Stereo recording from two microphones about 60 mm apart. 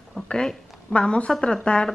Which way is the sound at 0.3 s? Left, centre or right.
Centre.